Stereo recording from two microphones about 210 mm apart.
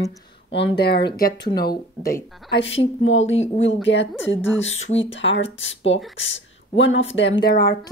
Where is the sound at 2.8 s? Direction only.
65° left (ahead or behind); by 7.7 s 50° left (ahead or behind).